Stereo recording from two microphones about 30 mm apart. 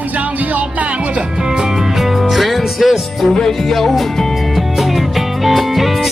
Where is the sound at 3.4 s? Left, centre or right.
Centre.